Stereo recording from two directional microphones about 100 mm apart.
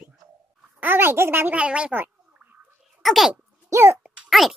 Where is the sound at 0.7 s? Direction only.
20° right (ahead or behind).